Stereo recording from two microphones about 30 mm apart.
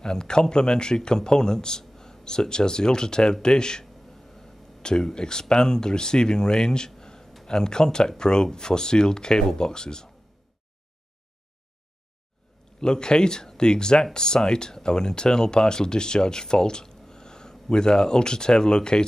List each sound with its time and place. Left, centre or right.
0.0 s speech: left
4.8 s speech: left
12.8 s speech: left